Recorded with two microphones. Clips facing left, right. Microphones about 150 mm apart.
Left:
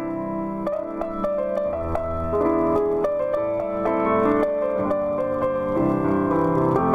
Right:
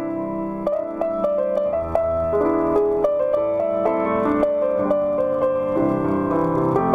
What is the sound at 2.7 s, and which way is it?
Music, 5° right (ahead or behind).